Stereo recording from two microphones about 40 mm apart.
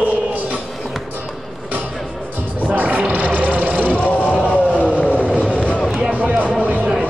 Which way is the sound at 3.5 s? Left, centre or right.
Right.